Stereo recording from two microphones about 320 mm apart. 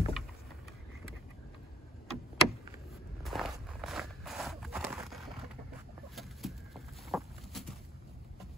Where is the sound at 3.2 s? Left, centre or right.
Centre.